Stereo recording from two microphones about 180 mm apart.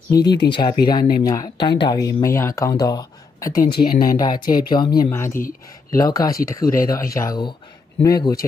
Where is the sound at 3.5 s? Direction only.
55° left (ahead or behind).